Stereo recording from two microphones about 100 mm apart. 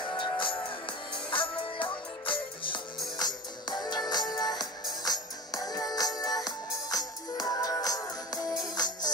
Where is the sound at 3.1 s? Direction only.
45° left (ahead or behind).